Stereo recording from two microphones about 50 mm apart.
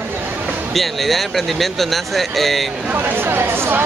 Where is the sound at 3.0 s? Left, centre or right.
Right.